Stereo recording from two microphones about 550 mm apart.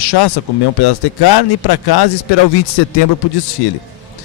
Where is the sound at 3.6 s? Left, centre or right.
Left.